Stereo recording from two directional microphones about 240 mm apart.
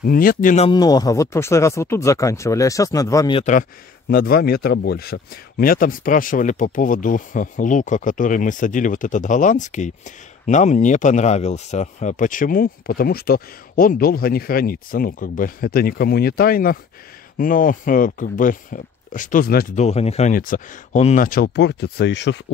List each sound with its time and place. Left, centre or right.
0.0 s speech: left
0.7 s speech: centre
4.1 s speech: left